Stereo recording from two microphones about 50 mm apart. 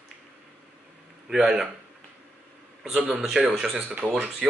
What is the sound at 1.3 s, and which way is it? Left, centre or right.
Speech, centre.